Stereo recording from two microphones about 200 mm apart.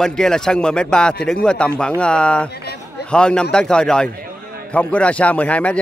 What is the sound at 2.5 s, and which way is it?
Chatter, 55° left (ahead or behind).